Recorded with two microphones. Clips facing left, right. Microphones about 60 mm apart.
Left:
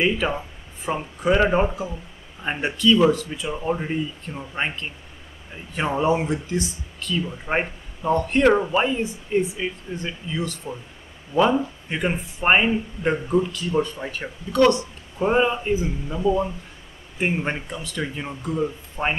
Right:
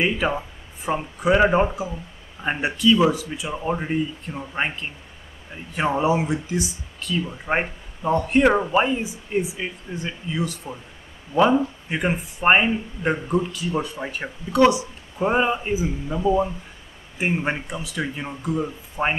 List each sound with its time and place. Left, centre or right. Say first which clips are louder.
0.0 s speech: even; centre